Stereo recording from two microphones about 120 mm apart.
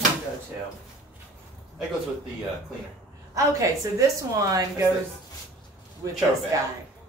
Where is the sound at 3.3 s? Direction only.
25° right (ahead or behind).